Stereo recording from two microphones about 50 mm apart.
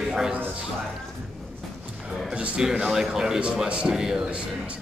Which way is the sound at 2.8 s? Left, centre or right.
Centre.